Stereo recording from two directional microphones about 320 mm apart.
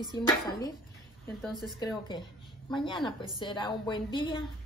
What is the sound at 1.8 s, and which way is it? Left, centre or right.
Speech, centre.